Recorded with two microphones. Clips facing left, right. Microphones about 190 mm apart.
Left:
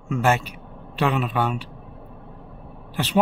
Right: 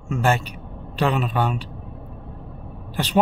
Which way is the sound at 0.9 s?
35° right (ahead or behind).